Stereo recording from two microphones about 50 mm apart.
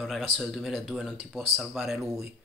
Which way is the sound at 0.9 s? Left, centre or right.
Centre.